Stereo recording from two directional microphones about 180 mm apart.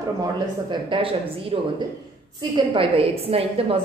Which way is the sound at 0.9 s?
30° right (ahead or behind).